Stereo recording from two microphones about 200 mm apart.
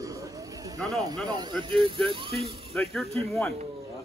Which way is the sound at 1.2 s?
20° right (ahead or behind).